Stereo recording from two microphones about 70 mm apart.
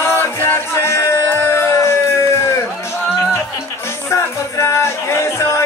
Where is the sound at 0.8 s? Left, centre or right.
Left.